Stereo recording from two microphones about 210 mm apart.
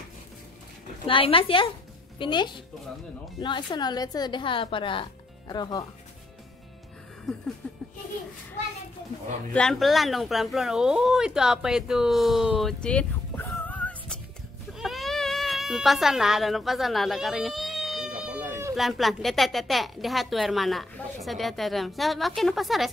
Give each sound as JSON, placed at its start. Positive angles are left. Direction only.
{"t": 1.0, "sound": "a woman's voice", "side_deg": 25}
{"t": 7.3, "sound": "a sound", "side_deg": 0}
{"t": 9.5, "sound": "speech", "side_deg": 5}
{"t": 14.7, "sound": "baby cry", "side_deg": 0}
{"t": 18.5, "sound": "cat", "side_deg": -15}
{"t": 18.8, "sound": "a woman's voice", "side_deg": 0}